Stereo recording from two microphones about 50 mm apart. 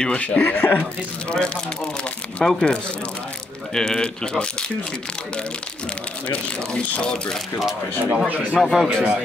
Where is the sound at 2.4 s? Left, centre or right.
Centre.